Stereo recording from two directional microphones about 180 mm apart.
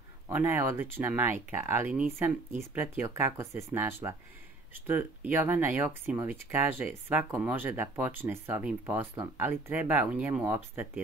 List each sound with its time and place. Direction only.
0.3 s speech: 10° right (ahead or behind)